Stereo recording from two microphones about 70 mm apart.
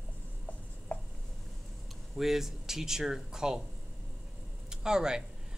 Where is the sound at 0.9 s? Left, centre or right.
Left.